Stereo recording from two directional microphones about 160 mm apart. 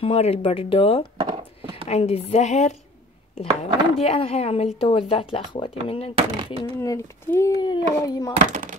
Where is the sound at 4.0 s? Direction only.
35° left (ahead or behind).